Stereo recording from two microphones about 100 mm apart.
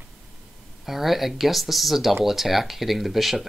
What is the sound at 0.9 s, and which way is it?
Speech, centre (ahead or behind).